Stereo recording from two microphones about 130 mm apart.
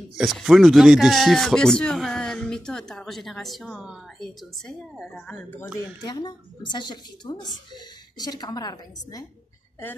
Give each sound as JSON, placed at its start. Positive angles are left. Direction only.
{"t": 0.2, "sound": "speech", "side_deg": 0}
{"t": 6.0, "sound": "speech", "side_deg": 35}